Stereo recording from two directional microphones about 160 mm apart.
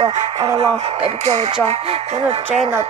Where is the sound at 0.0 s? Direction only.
30° right (ahead or behind).